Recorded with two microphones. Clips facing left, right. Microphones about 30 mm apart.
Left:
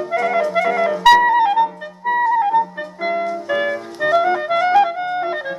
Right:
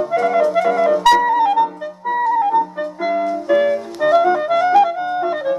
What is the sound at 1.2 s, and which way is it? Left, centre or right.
Clarinet, left.